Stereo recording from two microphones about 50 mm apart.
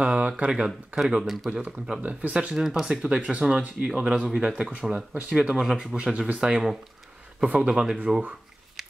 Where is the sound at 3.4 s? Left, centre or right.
Right.